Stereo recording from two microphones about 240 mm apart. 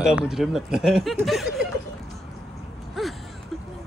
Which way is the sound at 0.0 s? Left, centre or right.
Centre.